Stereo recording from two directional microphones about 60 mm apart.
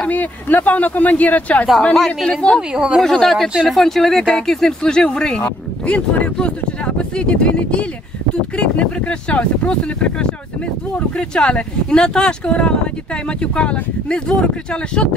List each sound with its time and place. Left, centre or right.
0.1 s speech: left
2.0 s speech: centre
2.7 s speech: centre
3.0 s speech: centre